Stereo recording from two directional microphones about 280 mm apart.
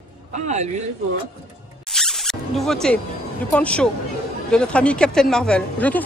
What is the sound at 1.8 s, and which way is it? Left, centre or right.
Music, centre.